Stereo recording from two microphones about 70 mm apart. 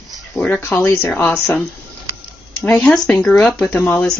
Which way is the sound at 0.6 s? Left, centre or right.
Left.